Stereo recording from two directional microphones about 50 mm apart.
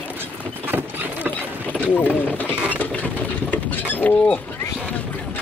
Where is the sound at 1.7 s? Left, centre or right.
Left.